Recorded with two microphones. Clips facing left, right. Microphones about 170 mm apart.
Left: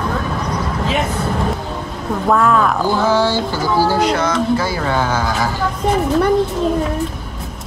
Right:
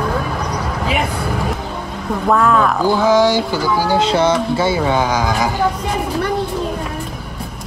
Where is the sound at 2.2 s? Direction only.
Centre (ahead or behind).